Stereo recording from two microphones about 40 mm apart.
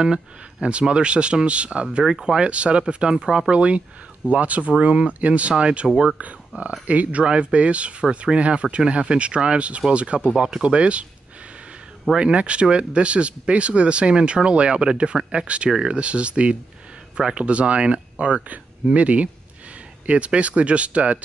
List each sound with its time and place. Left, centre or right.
0.0 s speech: right
1.9 s speech: centre
3.5 s speech: right
6.5 s speech: right
12.2 s speech: right